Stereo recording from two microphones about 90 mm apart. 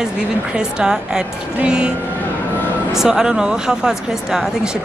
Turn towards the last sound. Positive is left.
turn(degrees=-5)  # may be behind; listen again after turning